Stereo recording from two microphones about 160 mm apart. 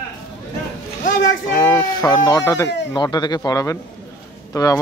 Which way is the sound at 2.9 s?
25° left (ahead or behind).